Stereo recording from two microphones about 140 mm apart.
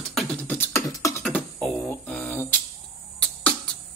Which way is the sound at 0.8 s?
25° left (ahead or behind).